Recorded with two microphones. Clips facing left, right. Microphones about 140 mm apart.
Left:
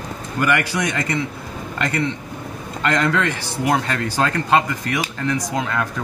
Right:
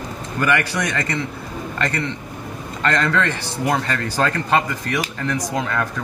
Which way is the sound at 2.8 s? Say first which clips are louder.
Even; 10° left (ahead or behind).